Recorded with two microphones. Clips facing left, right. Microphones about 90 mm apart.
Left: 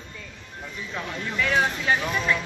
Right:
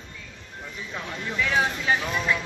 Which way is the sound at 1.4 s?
10° right (ahead or behind).